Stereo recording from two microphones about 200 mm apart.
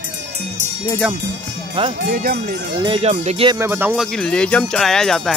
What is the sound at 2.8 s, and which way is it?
Speech, 30° right (ahead or behind).